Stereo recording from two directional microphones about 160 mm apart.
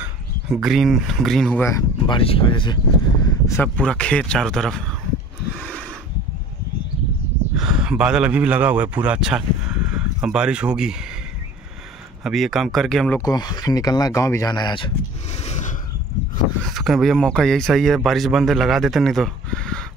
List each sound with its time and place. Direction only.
0.0 s speech: 5° right (ahead or behind)
1.6 s speech: 20° left (ahead or behind)
2.0 s speech: 35° left (ahead or behind)
3.3 s speech: 20° left (ahead or behind)
3.6 s speech: 5° left (ahead or behind)
5.6 s a sound: 5° left (ahead or behind)
7.5 s a man's voice: 5° right (ahead or behind)
12.2 s speech: centre (ahead or behind)
13.2 s speech: 25° left (ahead or behind)
15.4 s a sound: 45° left (ahead or behind)
16.6 s speech: centre (ahead or behind)